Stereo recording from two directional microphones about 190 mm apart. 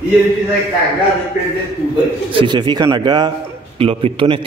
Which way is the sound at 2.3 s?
25° right (ahead or behind).